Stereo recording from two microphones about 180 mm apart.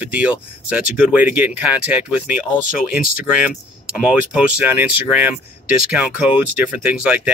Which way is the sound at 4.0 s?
5° right (ahead or behind).